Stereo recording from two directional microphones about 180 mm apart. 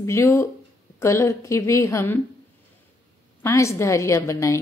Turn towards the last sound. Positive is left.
turn(degrees=15)  # may be behind; listen again after turning